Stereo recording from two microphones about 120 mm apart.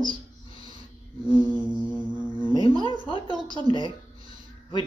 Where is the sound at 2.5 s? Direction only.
40° left (ahead or behind).